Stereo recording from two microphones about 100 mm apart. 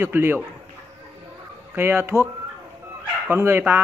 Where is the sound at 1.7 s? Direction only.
20° right (ahead or behind).